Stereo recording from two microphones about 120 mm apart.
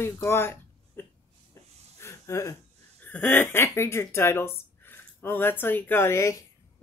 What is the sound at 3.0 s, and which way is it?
Speech, 10° left (ahead or behind).